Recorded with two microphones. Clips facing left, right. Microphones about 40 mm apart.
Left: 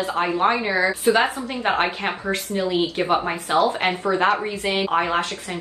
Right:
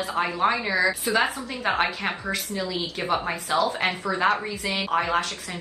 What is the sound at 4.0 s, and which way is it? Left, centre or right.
Speech, left.